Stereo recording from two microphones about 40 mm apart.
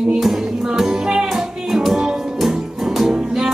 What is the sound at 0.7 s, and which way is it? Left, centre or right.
Music, centre.